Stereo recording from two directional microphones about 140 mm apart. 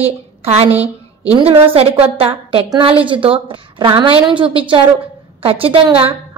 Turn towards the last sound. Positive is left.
turn(degrees=-40)  # may be behind; listen again after turning